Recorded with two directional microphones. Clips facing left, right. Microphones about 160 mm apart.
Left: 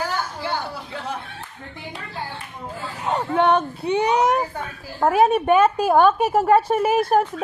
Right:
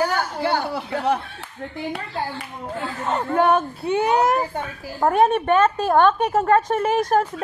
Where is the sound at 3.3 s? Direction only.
5° right (ahead or behind).